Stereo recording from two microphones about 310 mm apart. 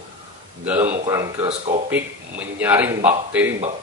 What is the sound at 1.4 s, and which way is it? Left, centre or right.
Speech, right.